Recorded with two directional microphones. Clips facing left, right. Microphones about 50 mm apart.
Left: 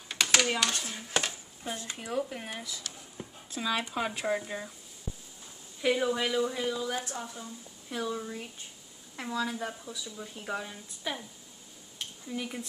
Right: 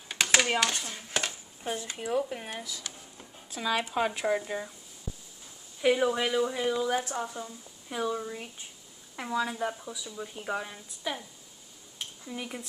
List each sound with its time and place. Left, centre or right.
0.2 s typewriter: right
0.8 s speech: centre
1.6 s speech: centre
2.0 s speech: centre
5.8 s speech: centre
6.7 s speech: right; by 11.1 s centre
12.3 s speech: centre